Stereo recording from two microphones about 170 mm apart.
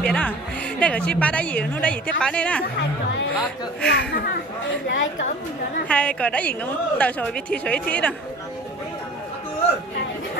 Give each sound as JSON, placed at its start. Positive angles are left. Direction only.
{"t": 0.0, "sound": "a woman's voice", "side_deg": 10}
{"t": 3.8, "sound": "speech", "side_deg": 65}
{"t": 4.8, "sound": "a woman's voice", "side_deg": 90}
{"t": 5.9, "sound": "a woman's voice", "side_deg": 5}